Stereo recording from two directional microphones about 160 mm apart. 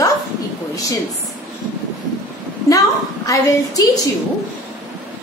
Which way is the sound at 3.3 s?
20° left (ahead or behind).